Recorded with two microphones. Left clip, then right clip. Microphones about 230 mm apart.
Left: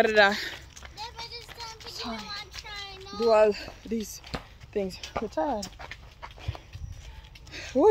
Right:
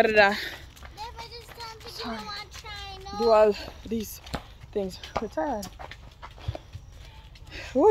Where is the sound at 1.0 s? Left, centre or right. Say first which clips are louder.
Even; centre.